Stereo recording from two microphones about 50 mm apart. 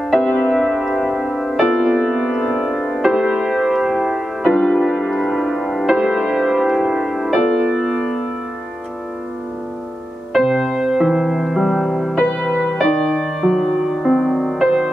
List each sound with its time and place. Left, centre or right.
0.4 s music: centre
4.4 s music: centre
4.8 s music: centre
7.3 s music: centre
10.5 s music: centre
12.2 s music: left
12.5 s music: centre